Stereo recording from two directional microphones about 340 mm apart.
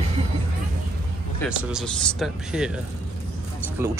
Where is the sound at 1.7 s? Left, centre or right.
Centre.